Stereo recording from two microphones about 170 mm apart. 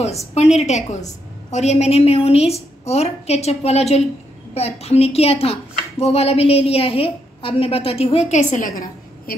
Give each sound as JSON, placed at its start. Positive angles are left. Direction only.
{"t": 0.3, "sound": "a woman's voice", "side_deg": 40}